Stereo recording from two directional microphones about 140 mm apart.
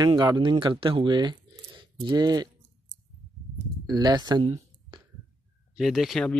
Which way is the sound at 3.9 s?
30° right (ahead or behind).